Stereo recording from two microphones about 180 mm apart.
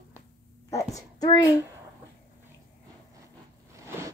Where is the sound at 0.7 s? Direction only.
20° left (ahead or behind).